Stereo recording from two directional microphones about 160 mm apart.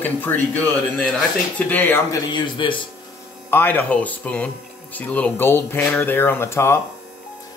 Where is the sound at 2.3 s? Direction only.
30° left (ahead or behind).